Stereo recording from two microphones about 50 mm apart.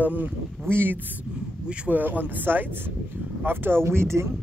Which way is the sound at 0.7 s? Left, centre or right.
Right.